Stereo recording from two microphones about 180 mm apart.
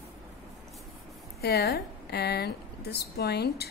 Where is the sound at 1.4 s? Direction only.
65° left (ahead or behind).